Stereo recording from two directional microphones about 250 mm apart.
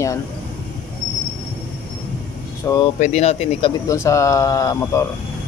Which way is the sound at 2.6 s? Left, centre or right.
Centre.